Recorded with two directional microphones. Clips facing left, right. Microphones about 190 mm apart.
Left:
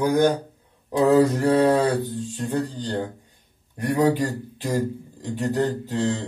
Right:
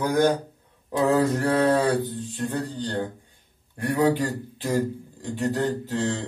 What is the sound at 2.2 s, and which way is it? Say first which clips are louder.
Mantra: left 2 dB; 10° left (ahead or behind).